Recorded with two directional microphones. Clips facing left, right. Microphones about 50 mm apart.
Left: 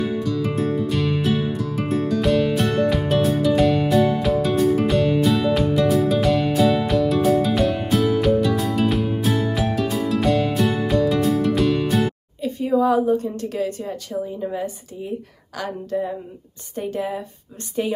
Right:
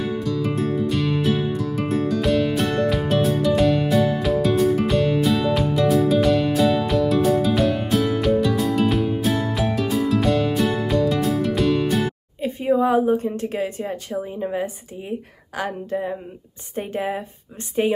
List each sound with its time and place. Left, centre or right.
0.0 s music: centre
12.4 s a woman's voice: right